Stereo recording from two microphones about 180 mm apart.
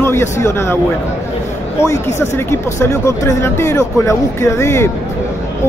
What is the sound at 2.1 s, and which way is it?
Speech, 15° left (ahead or behind).